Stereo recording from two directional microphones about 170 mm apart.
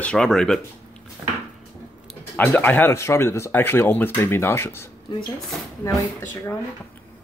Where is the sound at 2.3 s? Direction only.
10° left (ahead or behind).